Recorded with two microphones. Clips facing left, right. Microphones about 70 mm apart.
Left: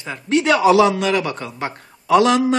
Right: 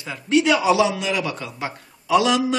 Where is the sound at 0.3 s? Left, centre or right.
Left.